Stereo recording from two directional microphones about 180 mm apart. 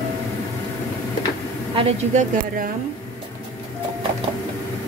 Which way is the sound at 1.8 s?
35° right (ahead or behind).